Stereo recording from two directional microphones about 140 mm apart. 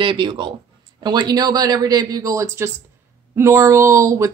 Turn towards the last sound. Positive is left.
turn(degrees=-20)  # may be behind; listen again after turning